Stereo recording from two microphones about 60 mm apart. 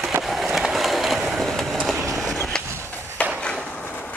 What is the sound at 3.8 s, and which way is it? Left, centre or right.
Train, left.